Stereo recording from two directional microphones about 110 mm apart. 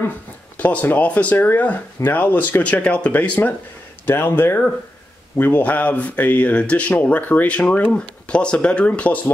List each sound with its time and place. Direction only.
0.6 s speech: 15° left (ahead or behind)